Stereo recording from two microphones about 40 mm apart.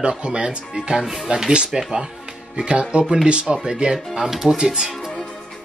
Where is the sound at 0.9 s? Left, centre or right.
Centre.